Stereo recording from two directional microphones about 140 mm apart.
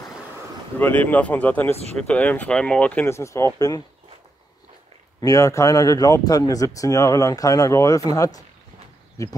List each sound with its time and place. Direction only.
0.7 s speech: 10° left (ahead or behind)
5.2 s speech: 20° left (ahead or behind)